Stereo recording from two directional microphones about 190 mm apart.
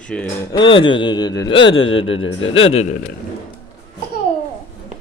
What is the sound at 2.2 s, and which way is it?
Speech, 90° left.